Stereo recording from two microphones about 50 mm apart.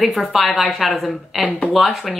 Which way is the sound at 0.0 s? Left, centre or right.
Centre.